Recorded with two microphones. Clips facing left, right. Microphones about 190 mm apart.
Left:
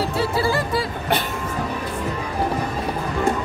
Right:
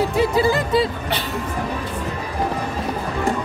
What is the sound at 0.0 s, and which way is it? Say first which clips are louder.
Music: right 4 dB; 15° right (ahead or behind).